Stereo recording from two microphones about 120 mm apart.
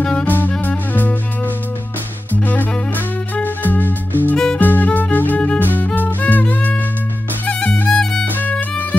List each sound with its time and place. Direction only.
0.0 s music: 10° left (ahead or behind)
2.4 s music: 15° left (ahead or behind)
7.4 s violin: 15° left (ahead or behind)
8.0 s violin: 5° left (ahead or behind)
8.4 s violin: 15° left (ahead or behind)